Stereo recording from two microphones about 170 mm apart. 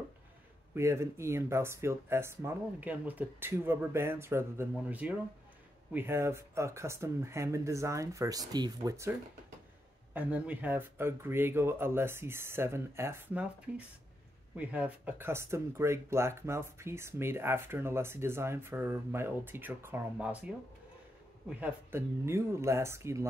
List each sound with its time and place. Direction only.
0.7 s speech: 15° right (ahead or behind)
10.1 s speech: 10° right (ahead or behind)